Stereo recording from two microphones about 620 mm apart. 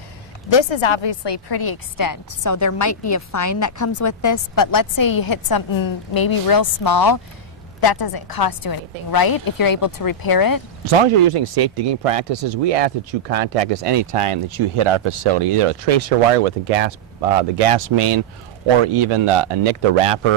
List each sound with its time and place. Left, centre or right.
0.5 s a woman's voice: left
10.9 s speech: right